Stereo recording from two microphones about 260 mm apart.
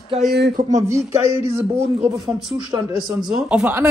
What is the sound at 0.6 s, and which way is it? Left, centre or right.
Speech, right.